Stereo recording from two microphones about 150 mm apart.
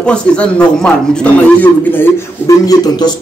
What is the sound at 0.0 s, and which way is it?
A man's voice, 5° left (ahead or behind).